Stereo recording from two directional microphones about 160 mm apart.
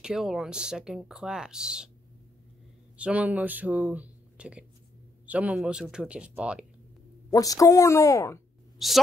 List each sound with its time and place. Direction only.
0.0 s speech: 5° right (ahead or behind)
3.0 s speech: 10° right (ahead or behind)
7.2 s a woman's voice: 20° left (ahead or behind)
8.7 s speech: centre (ahead or behind)